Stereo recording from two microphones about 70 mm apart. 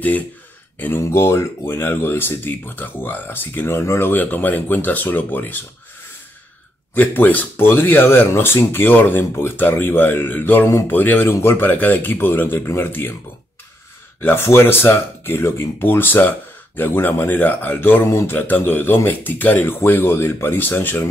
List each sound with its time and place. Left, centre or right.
0.7 s speech: left
6.9 s speech: left
14.2 s speech: left